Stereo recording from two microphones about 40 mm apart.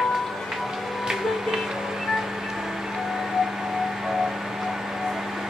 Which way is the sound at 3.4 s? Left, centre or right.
Centre.